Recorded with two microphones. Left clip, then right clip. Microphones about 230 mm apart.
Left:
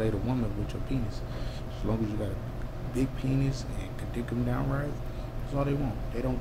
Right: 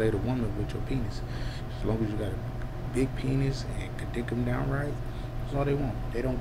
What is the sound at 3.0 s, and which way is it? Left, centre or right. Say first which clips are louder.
Speech: right 1 dB; centre.